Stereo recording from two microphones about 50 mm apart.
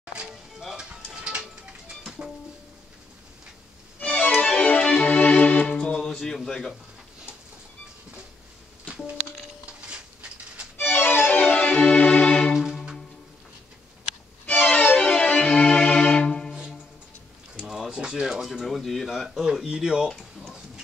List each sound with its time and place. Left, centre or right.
0.0 s music: centre
0.3 s music: centre
0.7 s music: centre
4.0 s music: left
4.9 s music: left
5.9 s music: centre
9.7 s a sound: right
10.8 s music: left
14.4 s music: left
16.3 s music: centre
17.6 s a sound: centre
18.3 s a sound: centre
20.1 s a sound: centre